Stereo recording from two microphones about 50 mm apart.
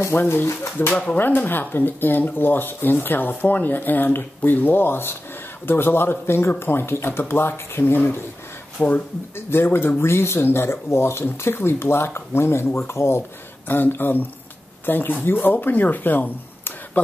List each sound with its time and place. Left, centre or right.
0.3 s speech: left
0.8 s speech: left
8.7 s speech: left
9.5 s speech: left
13.7 s a man's voice: left